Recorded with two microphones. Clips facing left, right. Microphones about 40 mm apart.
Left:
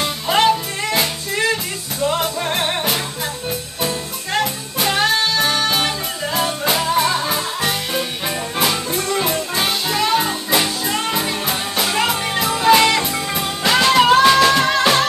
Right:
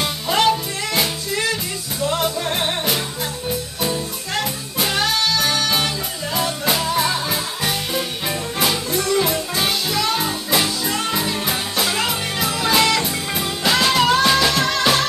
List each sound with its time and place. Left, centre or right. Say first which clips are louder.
0.3 s music: left 2 dB; centre
4.7 s music: left 3 dB; centre
8.3 s music: left 1 dB; centre